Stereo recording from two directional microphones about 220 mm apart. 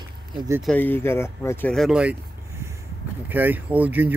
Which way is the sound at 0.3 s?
20° right (ahead or behind).